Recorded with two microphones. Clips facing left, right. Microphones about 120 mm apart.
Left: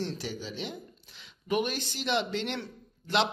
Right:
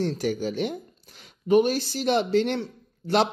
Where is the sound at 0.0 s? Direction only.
50° right (ahead or behind).